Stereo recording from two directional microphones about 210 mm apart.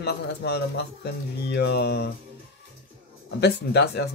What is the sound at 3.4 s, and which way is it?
Speech, 50° left (ahead or behind).